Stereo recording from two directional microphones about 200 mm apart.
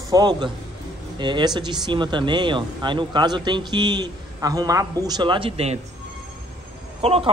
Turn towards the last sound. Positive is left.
turn(degrees=-30)  # may be behind; listen again after turning